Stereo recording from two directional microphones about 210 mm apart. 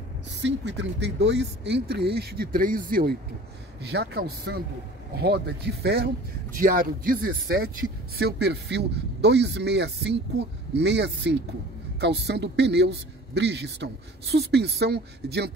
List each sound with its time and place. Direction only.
0.4 s speech: 55° right (ahead or behind)